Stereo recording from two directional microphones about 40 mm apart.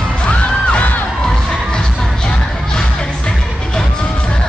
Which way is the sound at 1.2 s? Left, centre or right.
Centre.